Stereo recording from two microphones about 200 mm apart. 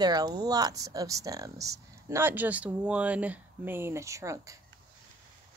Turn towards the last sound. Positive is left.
turn(degrees=-15)  # may be behind; listen again after turning